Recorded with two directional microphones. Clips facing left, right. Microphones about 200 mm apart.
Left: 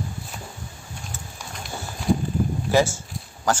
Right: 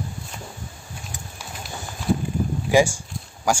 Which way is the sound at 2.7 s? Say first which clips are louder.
Right 3 dB; 15° right (ahead or behind).